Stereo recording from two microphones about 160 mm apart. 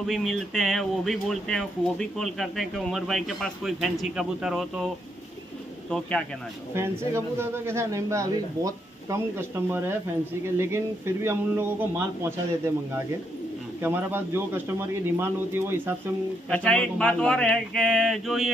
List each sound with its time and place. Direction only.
0.0 s speech: centre (ahead or behind)
5.9 s speech: 5° left (ahead or behind)
6.7 s a man's voice: 15° right (ahead or behind)
16.4 s speech: 5° left (ahead or behind)